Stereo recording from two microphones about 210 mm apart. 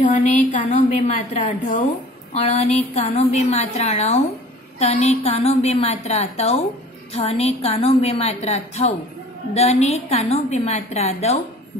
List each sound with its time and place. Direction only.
0.0 s a woman's voice: 35° left (ahead or behind)